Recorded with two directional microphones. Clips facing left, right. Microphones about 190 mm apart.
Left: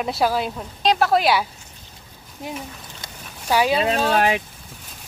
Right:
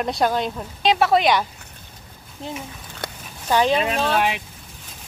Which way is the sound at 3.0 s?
60° right (ahead or behind).